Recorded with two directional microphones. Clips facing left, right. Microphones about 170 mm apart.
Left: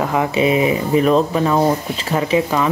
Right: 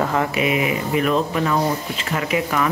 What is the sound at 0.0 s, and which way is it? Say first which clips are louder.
Speech: left 2 dB; 15° left (ahead or behind).